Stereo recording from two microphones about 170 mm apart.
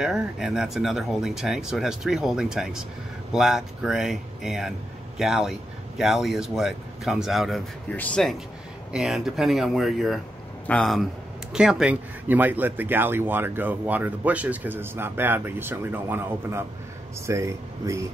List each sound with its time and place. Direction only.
0.0 s speech: 5° right (ahead or behind)